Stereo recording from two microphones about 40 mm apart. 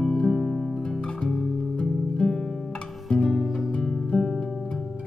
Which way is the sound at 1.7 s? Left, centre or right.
Centre.